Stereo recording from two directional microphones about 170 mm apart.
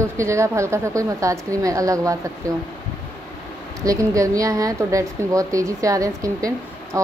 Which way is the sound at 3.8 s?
20° right (ahead or behind).